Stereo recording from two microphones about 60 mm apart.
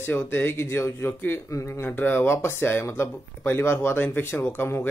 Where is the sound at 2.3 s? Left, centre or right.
Left.